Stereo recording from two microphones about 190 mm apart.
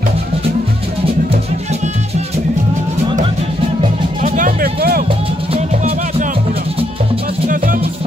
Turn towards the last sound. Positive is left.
turn(degrees=-45)  # may be behind; listen again after turning